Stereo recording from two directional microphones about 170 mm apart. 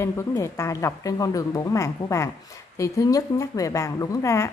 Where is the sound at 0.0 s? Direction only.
15° left (ahead or behind).